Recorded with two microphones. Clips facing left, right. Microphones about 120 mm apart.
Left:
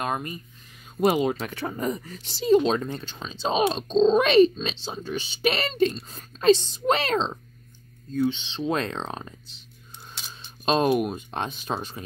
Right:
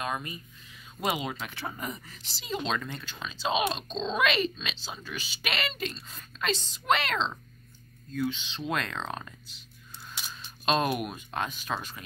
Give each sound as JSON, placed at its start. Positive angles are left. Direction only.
{"t": 0.0, "sound": "speech", "side_deg": 45}
{"t": 8.1, "sound": "speech", "side_deg": 30}
{"t": 10.6, "sound": "speech", "side_deg": 35}